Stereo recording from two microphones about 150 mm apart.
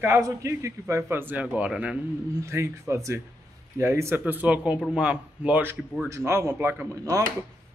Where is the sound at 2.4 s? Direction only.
20° right (ahead or behind).